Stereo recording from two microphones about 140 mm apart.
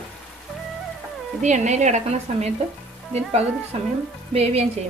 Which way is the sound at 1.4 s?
55° right (ahead or behind).